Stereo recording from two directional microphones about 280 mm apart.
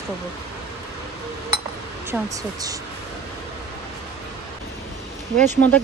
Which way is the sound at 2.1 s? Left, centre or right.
Centre.